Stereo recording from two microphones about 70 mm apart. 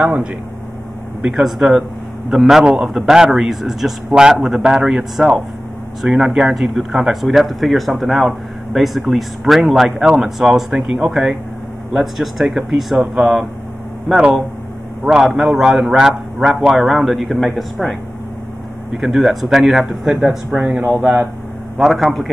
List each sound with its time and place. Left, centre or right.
0.0 s a man's voice: centre
6.3 s a man's voice: centre
18.9 s speech: centre
20.8 s a man's voice: centre
21.7 s speech: centre